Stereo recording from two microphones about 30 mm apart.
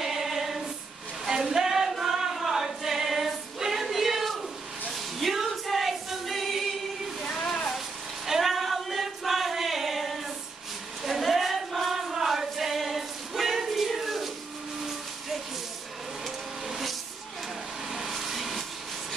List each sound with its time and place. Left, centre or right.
0.0 s choir: centre
1.4 s music: centre
2.3 s choir: centre
7.2 s a sound: centre
8.4 s choir: centre
16.3 s vehicle: centre
17.9 s vehicle: centre